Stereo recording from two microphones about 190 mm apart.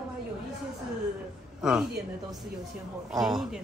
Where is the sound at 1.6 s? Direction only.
5° right (ahead or behind).